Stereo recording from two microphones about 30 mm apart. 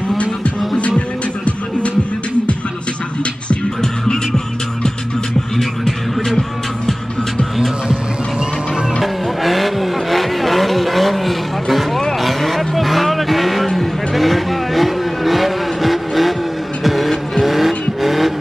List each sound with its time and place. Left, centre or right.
0.7 s music: left
3.8 s music: centre
5.6 s music: centre
9.0 s vehicle: centre
16.8 s music: centre
17.1 s vehicle: centre